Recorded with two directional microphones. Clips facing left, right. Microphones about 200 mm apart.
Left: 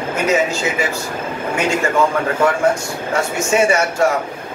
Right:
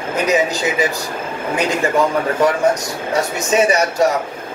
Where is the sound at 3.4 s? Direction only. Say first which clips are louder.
Even; 20° right (ahead or behind).